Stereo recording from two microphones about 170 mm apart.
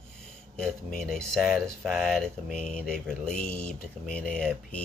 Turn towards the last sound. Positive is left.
turn(degrees=5)  # may be behind; listen again after turning